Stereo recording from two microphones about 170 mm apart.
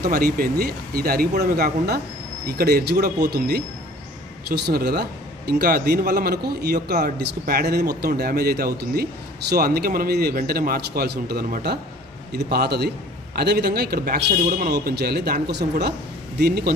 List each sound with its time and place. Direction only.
0.0 s a man's voice: 60° right (ahead or behind)
14.3 s a man's voice: 45° right (ahead or behind)
14.7 s a man's voice: 70° right (ahead or behind)